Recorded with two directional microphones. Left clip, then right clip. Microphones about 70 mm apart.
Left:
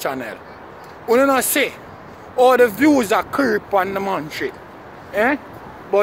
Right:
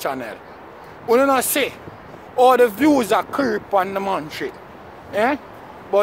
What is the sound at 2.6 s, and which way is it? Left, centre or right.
Speech, right.